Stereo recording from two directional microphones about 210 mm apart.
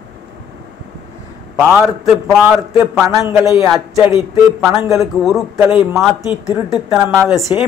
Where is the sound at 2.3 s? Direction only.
10° right (ahead or behind).